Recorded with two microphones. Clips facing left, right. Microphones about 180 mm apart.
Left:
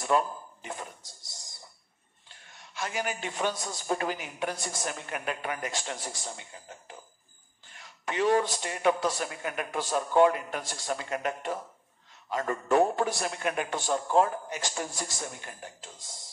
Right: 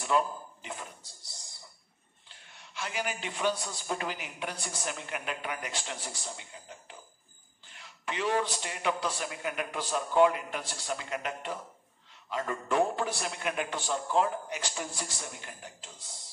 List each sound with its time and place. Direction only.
0.0 s a sound: 45° left (ahead or behind)
2.2 s a man's voice: 45° left (ahead or behind)
8.0 s a man's voice: 45° left (ahead or behind)